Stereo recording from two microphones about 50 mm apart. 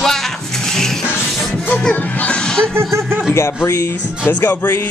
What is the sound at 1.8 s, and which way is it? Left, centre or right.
Music, left.